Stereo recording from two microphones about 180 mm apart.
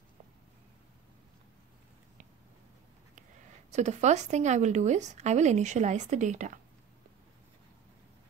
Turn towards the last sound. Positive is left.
turn(degrees=-45)  # may be behind; listen again after turning